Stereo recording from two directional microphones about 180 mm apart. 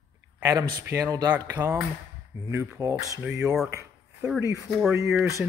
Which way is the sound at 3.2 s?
5° right (ahead or behind).